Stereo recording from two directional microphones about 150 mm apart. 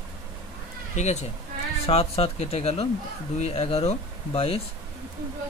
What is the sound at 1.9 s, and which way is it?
Speech, 40° left (ahead or behind).